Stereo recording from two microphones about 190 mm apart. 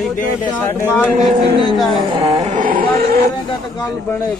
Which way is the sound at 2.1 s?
25° right (ahead or behind).